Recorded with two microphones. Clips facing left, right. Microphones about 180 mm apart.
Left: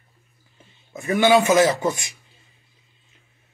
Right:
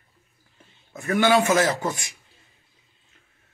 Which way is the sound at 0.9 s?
15° left (ahead or behind).